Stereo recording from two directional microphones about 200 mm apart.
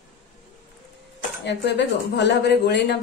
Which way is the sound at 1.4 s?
60° left (ahead or behind).